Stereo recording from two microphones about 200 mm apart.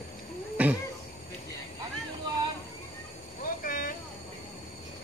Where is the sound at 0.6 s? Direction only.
5° right (ahead or behind).